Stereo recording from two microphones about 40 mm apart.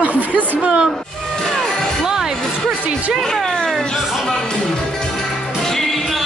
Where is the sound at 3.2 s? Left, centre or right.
Centre.